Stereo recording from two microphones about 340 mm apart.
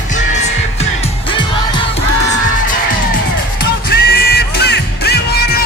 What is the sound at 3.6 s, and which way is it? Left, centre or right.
Music, left.